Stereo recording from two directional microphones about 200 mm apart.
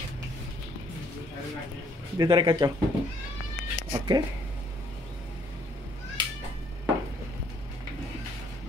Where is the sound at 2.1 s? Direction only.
20° right (ahead or behind).